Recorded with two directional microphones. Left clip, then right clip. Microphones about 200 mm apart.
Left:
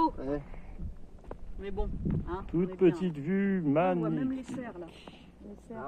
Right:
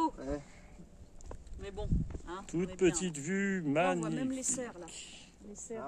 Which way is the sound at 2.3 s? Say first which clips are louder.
Left 4 dB; centre (ahead or behind).